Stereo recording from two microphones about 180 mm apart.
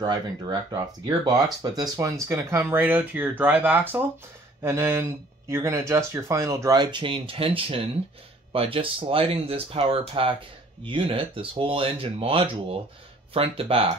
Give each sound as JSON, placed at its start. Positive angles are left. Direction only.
{"t": 0.0, "sound": "speech", "side_deg": -25}